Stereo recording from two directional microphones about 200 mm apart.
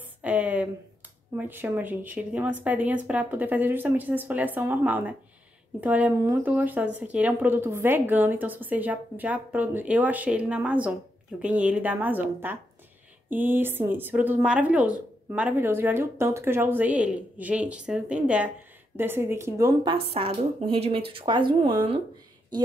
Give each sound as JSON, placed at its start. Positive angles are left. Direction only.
{"t": 0.0, "sound": "a sound", "side_deg": -5}
{"t": 1.3, "sound": "a woman's voice", "side_deg": -10}
{"t": 20.1, "sound": "speech", "side_deg": -30}